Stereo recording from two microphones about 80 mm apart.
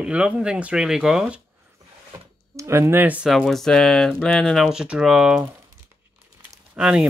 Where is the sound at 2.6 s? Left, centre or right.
Right.